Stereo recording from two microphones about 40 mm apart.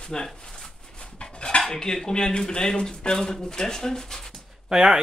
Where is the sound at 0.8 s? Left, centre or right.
Centre.